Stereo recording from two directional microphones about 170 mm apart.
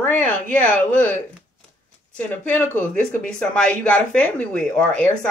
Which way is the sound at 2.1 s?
10° left (ahead or behind).